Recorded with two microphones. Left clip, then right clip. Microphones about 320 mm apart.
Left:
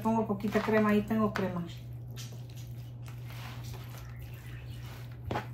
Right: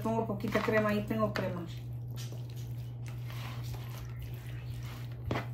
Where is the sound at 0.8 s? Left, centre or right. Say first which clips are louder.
Left 2 dB; centre.